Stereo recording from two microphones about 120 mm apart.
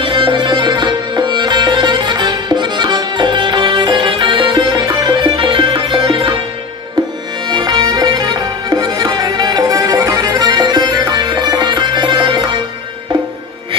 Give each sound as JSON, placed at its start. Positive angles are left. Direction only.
{"t": 0.0, "sound": "music", "side_deg": -45}
{"t": 7.4, "sound": "music", "side_deg": -40}
{"t": 10.2, "sound": "music", "side_deg": -35}